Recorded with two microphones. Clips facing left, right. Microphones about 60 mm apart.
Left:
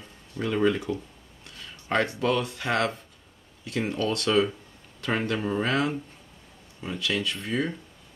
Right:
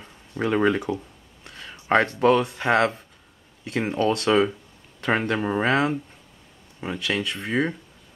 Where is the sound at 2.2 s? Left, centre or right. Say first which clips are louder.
Right 7 dB; right.